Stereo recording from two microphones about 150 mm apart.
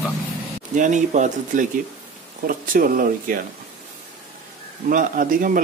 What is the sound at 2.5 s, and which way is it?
Speech, 70° right (ahead or behind).